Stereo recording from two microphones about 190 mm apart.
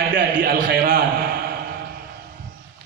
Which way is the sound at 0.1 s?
50° right (ahead or behind).